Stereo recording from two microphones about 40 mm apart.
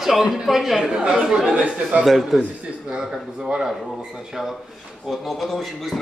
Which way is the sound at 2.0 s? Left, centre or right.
Centre.